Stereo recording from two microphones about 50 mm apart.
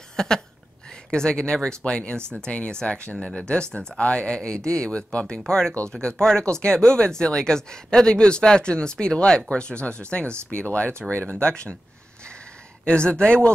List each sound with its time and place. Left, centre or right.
0.1 s a sound: centre
1.1 s speech: centre
12.8 s speech: left